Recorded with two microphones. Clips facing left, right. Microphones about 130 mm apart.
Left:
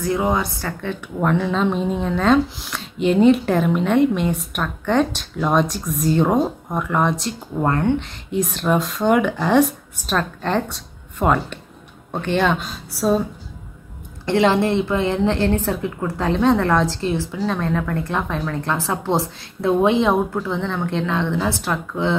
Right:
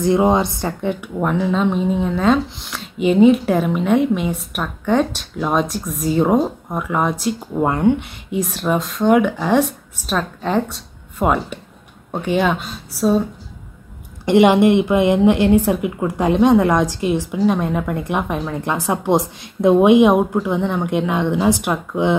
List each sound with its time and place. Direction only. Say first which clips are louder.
0.0 s speech: right 5 dB; 25° right (ahead or behind)
1.0 s speech: left 2 dB; 5° right (ahead or behind)
14.2 s a woman's voice: right 5 dB; 15° right (ahead or behind)